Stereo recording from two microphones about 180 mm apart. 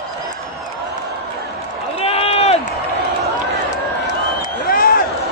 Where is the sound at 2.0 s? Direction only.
35° left (ahead or behind).